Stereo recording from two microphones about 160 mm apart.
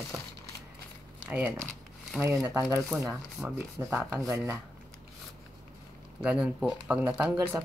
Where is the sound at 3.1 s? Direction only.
5° right (ahead or behind).